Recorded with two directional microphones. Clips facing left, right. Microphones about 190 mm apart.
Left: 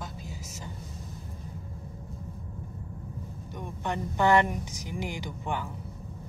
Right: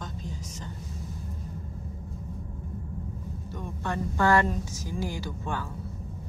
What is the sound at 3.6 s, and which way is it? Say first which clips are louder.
Speech: right 1 dB; 20° left (ahead or behind).